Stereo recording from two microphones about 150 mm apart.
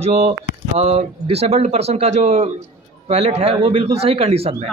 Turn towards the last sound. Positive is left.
turn(degrees=-40)  # may be behind; listen again after turning